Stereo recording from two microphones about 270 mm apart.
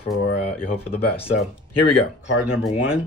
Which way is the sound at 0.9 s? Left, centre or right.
Centre.